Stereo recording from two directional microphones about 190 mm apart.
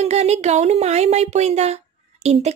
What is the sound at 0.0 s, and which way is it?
A woman's voice, 35° right (ahead or behind).